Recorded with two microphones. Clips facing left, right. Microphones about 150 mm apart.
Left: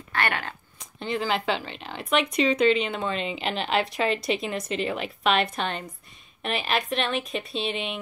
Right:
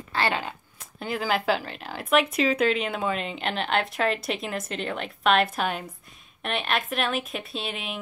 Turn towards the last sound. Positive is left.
turn(degrees=0)  # may be behind; listen again after turning